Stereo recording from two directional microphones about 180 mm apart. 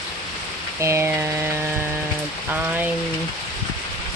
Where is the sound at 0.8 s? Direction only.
15° right (ahead or behind).